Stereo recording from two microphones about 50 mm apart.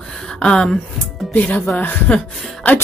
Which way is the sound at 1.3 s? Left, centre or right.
Left.